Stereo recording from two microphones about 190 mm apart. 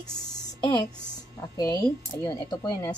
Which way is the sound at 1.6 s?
20° left (ahead or behind).